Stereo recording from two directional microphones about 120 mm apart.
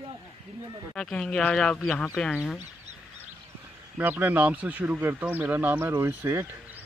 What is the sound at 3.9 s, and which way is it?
Speech, 15° right (ahead or behind).